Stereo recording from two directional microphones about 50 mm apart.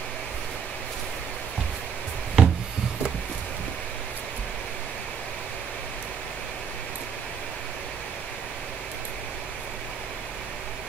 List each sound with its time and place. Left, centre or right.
2.4 s wood: right